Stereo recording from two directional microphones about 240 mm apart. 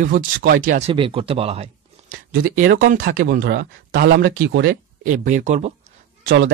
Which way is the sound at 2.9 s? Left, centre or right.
Right.